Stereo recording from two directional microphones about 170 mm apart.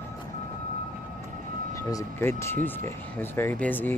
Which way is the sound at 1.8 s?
20° left (ahead or behind).